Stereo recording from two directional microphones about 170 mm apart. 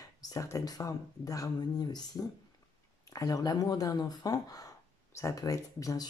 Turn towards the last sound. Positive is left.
turn(degrees=20)  # may be behind; listen again after turning